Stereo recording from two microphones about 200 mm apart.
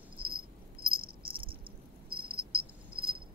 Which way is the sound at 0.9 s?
50° right (ahead or behind).